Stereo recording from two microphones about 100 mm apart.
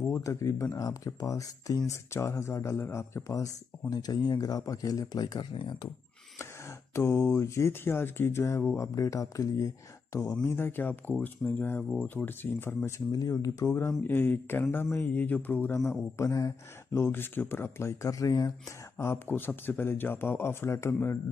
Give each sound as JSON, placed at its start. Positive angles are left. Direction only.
{"t": 0.1, "sound": "speech", "side_deg": 30}
{"t": 5.5, "sound": "speech", "side_deg": 55}
{"t": 7.0, "sound": "speech", "side_deg": 30}
{"t": 10.5, "sound": "speech", "side_deg": 20}
{"t": 13.1, "sound": "speech", "side_deg": 35}
{"t": 18.9, "sound": "speech", "side_deg": 25}